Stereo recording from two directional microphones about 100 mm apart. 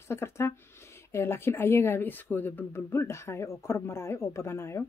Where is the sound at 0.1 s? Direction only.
25° left (ahead or behind).